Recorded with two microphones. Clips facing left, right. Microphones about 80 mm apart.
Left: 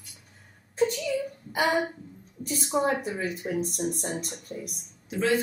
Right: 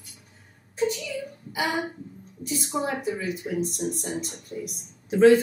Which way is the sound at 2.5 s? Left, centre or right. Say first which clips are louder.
Left 2 dB; left.